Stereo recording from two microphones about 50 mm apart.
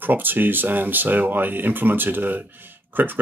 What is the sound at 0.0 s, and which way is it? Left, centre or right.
Speech, right.